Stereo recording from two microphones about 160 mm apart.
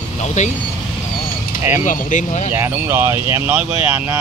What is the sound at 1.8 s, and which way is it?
Speech, 50° left (ahead or behind).